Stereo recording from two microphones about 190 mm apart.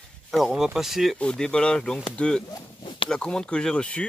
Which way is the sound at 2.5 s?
25° left (ahead or behind).